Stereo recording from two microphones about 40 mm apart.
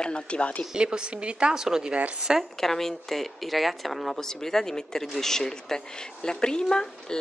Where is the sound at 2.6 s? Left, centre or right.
Centre.